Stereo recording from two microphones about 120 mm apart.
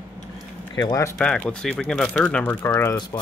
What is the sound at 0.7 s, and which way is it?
Speech, 35° left (ahead or behind).